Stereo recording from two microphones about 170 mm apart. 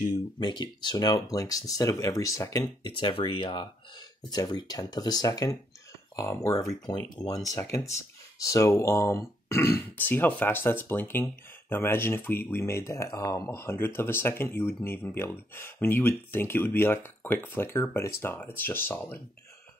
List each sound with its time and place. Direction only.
0.1 s speech: 25° left (ahead or behind)